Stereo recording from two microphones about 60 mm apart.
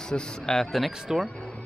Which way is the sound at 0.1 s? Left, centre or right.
Centre.